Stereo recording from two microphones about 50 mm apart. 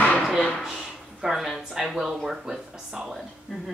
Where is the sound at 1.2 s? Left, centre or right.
Centre.